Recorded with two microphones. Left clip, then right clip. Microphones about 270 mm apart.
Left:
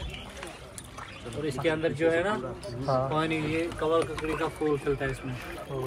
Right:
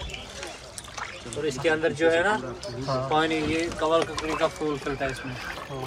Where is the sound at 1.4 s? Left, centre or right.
Right.